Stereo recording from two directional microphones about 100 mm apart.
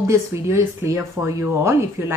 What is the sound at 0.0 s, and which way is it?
A woman's voice, 30° right (ahead or behind).